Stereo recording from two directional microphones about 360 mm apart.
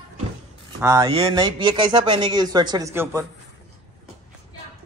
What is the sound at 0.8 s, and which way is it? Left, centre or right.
Speech, centre.